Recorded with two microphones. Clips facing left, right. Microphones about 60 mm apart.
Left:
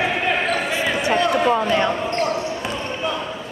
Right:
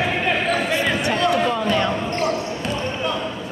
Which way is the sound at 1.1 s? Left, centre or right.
Centre.